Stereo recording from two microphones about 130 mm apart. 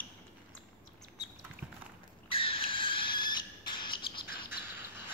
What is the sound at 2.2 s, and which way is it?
Bird, 45° left (ahead or behind).